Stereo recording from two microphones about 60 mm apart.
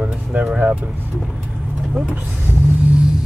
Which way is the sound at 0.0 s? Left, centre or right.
Right.